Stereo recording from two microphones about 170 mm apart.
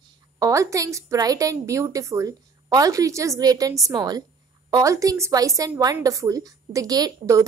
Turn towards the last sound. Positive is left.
turn(degrees=-20)  # may be behind; listen again after turning